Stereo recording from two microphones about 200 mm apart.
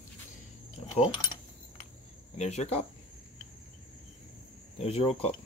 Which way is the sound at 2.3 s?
35° left (ahead or behind).